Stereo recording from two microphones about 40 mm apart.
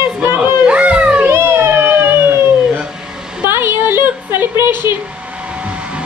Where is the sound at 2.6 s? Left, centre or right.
Right.